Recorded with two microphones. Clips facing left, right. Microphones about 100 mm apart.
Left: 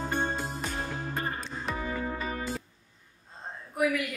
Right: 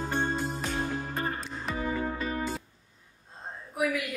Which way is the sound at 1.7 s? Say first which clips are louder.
Right 2 dB; centre (ahead or behind).